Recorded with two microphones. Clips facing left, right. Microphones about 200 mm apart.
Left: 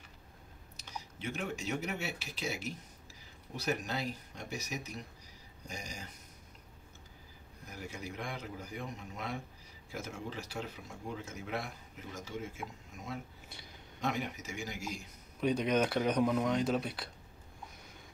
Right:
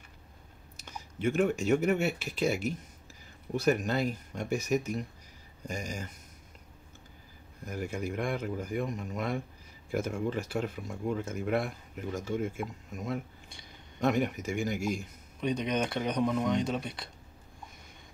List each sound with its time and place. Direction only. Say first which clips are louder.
0.7 s speech: right 5 dB; 50° right (ahead or behind)
7.6 s speech: right 9 dB; 55° right (ahead or behind)
15.4 s speech: even; 5° left (ahead or behind)